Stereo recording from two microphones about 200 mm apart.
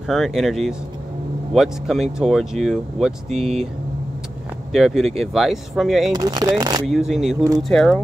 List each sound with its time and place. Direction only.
0.1 s speech: centre (ahead or behind)
4.7 s speech: centre (ahead or behind)
6.1 s speech: 20° right (ahead or behind)
6.9 s speech: centre (ahead or behind)